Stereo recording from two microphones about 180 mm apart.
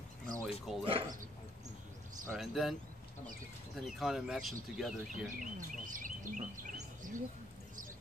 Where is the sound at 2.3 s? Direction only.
Centre (ahead or behind).